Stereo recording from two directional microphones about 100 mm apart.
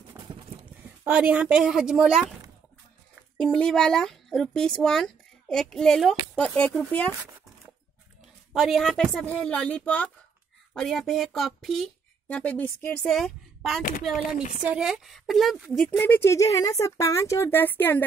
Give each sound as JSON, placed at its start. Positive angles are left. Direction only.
{"t": 0.2, "sound": "a sound", "side_deg": -25}
{"t": 0.8, "sound": "speech", "side_deg": -15}
{"t": 3.3, "sound": "speech", "side_deg": 10}
{"t": 8.5, "sound": "speech", "side_deg": 0}
{"t": 12.3, "sound": "speech", "side_deg": 15}
{"t": 13.1, "sound": "speech", "side_deg": 0}
{"t": 16.0, "sound": "speech", "side_deg": 25}